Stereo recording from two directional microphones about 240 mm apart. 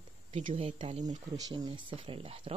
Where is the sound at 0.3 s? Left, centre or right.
Right.